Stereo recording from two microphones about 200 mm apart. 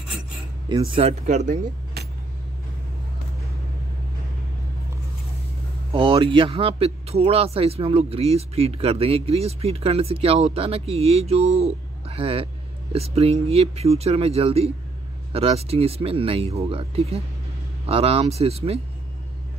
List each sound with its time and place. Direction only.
0.7 s speech: 25° right (ahead or behind)
1.2 s speech: 35° right (ahead or behind)
5.9 s speech: 25° right (ahead or behind)